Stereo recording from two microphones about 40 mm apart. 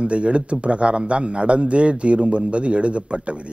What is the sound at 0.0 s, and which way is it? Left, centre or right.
A man's voice, right.